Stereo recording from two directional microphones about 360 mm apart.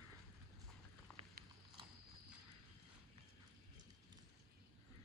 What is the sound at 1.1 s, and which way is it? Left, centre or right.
Biting, centre.